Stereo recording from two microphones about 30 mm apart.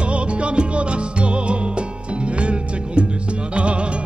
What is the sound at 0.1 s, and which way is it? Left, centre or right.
Music, right.